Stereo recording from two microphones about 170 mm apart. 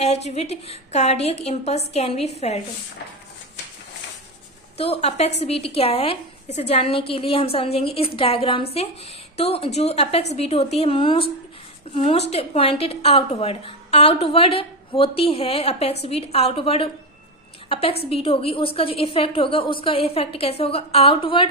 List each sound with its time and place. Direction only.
0.0 s a woman's voice: 40° left (ahead or behind)
4.7 s a woman's voice: 35° left (ahead or behind)